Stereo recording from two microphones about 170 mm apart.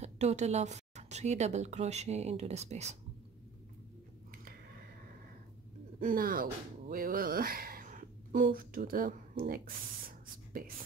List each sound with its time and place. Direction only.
0.0 s speech: 40° right (ahead or behind)
5.9 s speech: 55° right (ahead or behind)
9.5 s spray: 60° right (ahead or behind)